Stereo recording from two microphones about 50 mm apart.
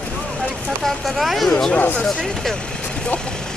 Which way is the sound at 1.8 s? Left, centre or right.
Left.